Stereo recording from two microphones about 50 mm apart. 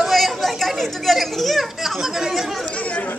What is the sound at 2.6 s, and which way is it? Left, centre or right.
Chatter, left.